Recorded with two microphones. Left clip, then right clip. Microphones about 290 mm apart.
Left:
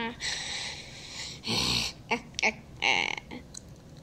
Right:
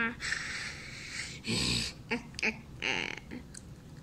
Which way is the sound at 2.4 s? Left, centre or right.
Left.